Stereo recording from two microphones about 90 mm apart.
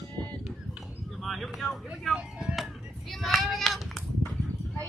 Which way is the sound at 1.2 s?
Centre (ahead or behind).